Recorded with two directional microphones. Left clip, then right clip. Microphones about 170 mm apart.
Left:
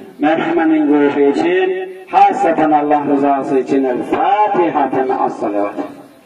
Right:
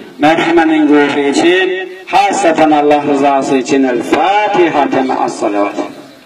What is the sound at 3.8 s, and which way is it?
Speech, centre (ahead or behind).